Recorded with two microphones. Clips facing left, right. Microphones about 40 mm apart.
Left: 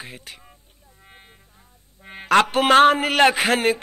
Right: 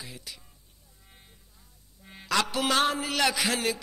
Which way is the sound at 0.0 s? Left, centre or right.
Left.